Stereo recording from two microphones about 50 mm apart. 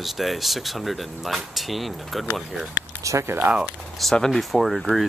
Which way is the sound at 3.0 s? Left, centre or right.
Right.